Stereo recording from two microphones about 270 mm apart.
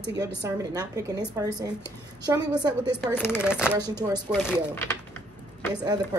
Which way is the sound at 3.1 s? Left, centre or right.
Centre.